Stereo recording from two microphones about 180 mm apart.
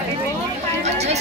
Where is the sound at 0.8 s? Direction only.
40° right (ahead or behind).